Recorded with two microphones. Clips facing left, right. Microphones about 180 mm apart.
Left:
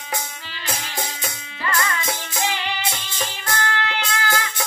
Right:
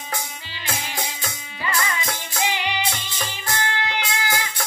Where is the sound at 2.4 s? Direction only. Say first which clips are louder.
Right 1 dB; 15° right (ahead or behind).